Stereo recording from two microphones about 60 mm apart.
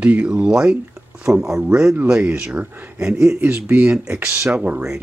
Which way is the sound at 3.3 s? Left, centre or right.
Right.